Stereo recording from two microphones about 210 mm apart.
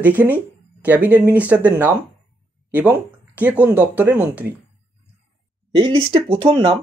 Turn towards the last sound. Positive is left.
turn(degrees=-25)  # may be behind; listen again after turning